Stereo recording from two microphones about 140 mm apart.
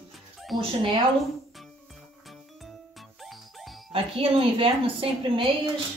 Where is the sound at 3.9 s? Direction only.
40° right (ahead or behind).